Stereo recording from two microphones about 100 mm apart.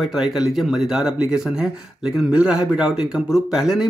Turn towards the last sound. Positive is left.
turn(degrees=-5)  # may be behind; listen again after turning